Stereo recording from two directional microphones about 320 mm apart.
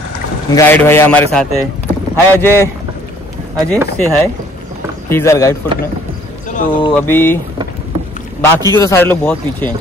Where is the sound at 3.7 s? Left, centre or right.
Centre.